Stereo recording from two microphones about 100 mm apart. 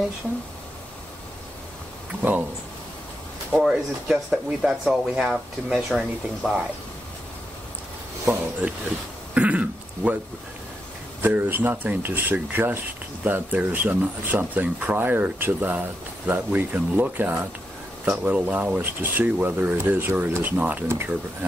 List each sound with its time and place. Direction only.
3.6 s speech: 5° right (ahead or behind)
8.3 s speech: 10° right (ahead or behind)
9.3 s a sound: 10° right (ahead or behind)
11.2 s speech: 20° right (ahead or behind)